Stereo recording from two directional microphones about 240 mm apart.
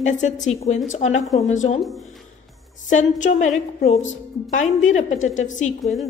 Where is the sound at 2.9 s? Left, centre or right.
Left.